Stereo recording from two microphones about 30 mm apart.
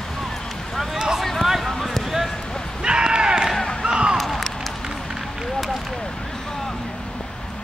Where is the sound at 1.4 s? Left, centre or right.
Centre.